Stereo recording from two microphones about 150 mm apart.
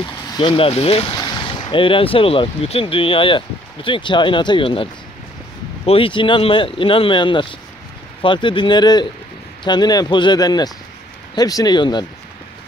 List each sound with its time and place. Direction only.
0.4 s speech: 35° left (ahead or behind)
1.1 s speech: 30° left (ahead or behind)
5.9 s speech: 35° left (ahead or behind)